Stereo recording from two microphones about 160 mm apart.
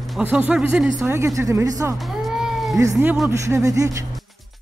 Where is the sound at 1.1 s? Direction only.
20° right (ahead or behind).